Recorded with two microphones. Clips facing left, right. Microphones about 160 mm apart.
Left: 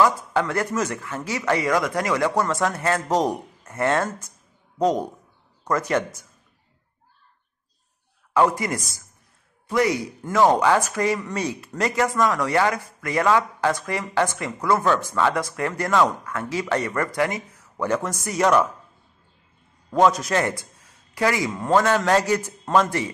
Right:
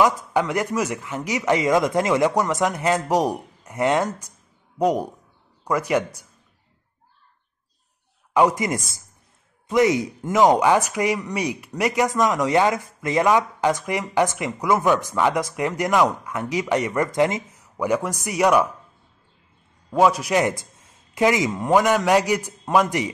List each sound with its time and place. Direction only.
0.0 s speech: 15° right (ahead or behind)
8.3 s a man's voice: 15° right (ahead or behind)
19.9 s a man's voice: 10° right (ahead or behind)